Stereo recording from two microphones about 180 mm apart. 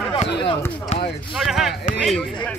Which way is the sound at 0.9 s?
30° left (ahead or behind).